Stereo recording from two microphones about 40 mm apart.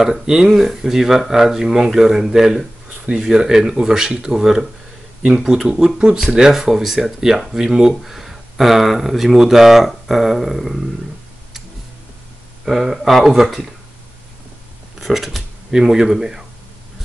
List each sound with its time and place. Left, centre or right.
0.0 s speech: centre
12.6 s speech: centre
15.0 s speech: centre
15.7 s speech: centre